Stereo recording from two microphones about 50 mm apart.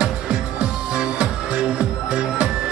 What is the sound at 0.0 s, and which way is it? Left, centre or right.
Music, centre.